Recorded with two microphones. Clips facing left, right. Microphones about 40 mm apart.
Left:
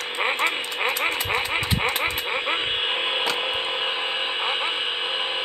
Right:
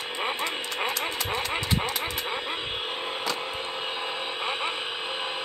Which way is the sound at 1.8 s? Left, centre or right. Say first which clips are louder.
Left 5 dB; left.